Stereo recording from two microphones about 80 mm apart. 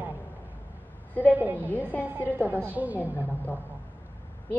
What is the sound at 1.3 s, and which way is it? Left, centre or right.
A woman's voice, right.